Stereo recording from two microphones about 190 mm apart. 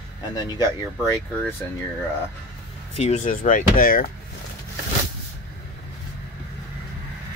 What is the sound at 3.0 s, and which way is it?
Speech, 35° left (ahead or behind).